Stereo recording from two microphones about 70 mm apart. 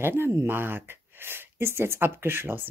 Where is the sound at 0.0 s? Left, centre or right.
Right.